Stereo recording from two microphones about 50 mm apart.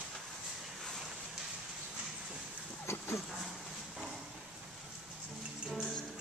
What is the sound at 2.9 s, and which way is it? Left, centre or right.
Dog, left.